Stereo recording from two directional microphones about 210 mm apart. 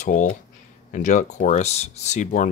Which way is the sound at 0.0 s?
35° left (ahead or behind).